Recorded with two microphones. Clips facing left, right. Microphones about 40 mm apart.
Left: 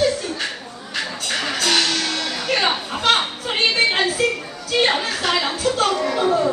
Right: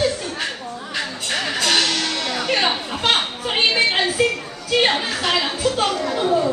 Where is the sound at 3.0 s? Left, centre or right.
Centre.